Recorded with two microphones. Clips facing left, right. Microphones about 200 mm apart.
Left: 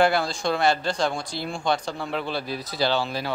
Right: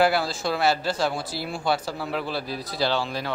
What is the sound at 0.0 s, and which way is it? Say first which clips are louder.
A man's voice: left 1 dB; 5° right (ahead or behind).